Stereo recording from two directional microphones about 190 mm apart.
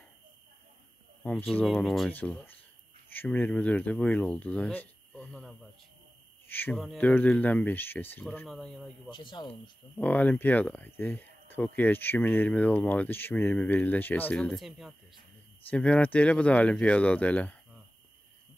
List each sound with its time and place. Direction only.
1.2 s speech: centre (ahead or behind)
9.1 s speech: 25° left (ahead or behind)
9.9 s speech: 10° left (ahead or behind)